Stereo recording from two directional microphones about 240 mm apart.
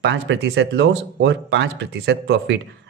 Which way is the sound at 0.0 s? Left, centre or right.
Right.